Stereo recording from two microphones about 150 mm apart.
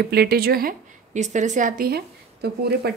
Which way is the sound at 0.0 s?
90° right.